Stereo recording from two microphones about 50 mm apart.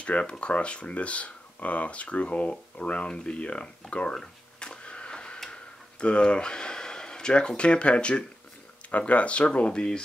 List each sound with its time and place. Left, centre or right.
0.0 s speech: left
4.1 s a sound: centre
8.9 s speech: left